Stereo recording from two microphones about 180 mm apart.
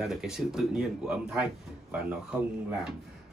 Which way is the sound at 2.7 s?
5° right (ahead or behind).